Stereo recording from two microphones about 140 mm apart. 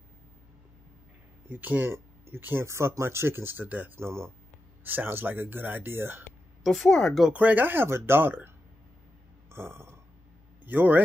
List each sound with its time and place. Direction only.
1.5 s speech: 15° right (ahead or behind)
6.6 s speech: centre (ahead or behind)
7.3 s speech: 10° right (ahead or behind)
9.5 s a sound: 15° right (ahead or behind)
10.6 s speech: 15° right (ahead or behind)